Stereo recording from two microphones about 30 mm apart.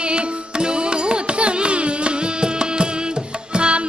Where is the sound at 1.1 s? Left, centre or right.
Right.